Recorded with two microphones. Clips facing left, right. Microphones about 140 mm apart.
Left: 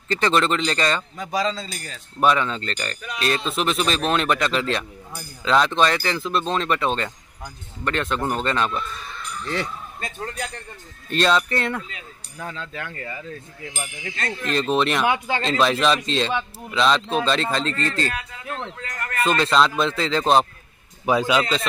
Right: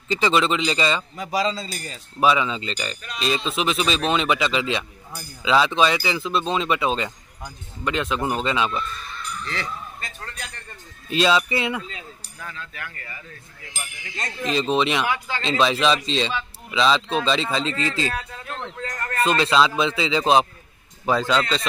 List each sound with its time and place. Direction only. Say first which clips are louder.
0.1 s speech: even; 5° right (ahead or behind)
10.0 s speech: left 6 dB; 25° left (ahead or behind)
11.1 s speech: even; 5° right (ahead or behind)
12.4 s speech: left 5 dB; 25° left (ahead or behind)
14.1 s speech: right 1 dB; 15° right (ahead or behind)
14.5 s speech: even; centre (ahead or behind)
15.0 s speech: left 4 dB; 20° left (ahead or behind)
15.4 s speech: even; centre (ahead or behind)
18.8 s a sound: right 2 dB; 30° right (ahead or behind)
19.2 s speech: even; centre (ahead or behind)
21.0 s speech: left 1 dB; 10° left (ahead or behind)